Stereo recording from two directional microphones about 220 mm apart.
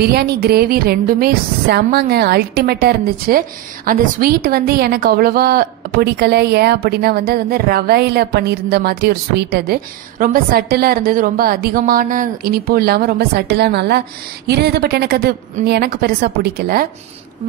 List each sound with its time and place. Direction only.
0.0 s a woman's voice: 45° right (ahead or behind)